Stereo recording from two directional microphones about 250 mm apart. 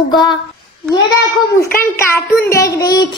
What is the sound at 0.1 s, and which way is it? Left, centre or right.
Speech, centre.